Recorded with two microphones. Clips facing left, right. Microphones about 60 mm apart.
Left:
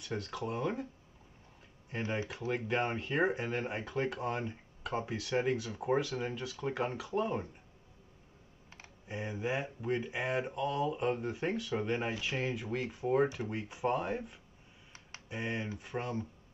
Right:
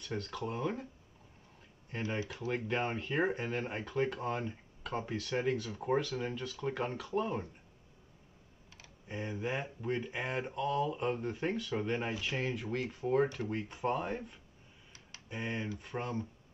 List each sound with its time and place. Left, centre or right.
0.0 s speech: centre
1.9 s speech: centre
9.0 s speech: centre
14.9 s a sound: left
15.2 s speech: centre